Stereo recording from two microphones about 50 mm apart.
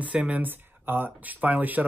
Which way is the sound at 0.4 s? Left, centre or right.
Right.